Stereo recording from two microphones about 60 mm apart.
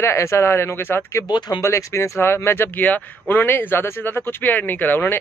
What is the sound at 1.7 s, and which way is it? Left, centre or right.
Speech, left.